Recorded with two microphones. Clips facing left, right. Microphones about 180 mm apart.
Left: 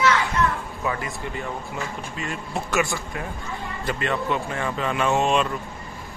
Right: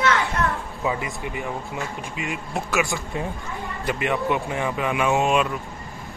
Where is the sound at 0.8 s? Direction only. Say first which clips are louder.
Right 2 dB; 15° right (ahead or behind).